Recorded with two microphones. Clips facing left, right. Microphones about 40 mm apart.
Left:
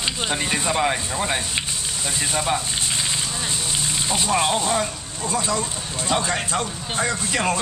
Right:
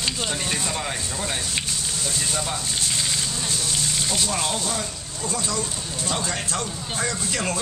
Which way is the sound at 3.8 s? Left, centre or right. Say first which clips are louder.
Left 4 dB; left.